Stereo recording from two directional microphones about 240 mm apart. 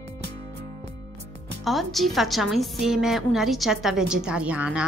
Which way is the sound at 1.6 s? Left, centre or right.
Centre.